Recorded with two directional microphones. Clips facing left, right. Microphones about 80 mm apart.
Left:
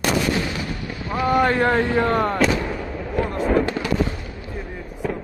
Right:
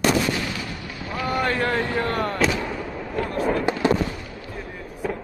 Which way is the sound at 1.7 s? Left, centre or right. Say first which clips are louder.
Left 5 dB; left.